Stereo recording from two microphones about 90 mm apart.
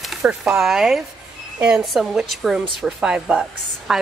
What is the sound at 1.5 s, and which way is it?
Speech, 20° right (ahead or behind).